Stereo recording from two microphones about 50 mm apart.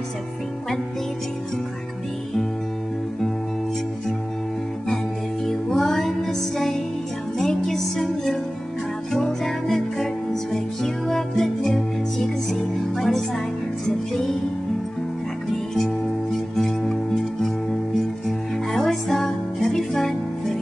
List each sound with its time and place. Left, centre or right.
4.8 s music: centre
15.7 s music: centre